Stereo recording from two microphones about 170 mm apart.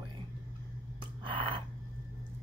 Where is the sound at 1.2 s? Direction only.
30° right (ahead or behind).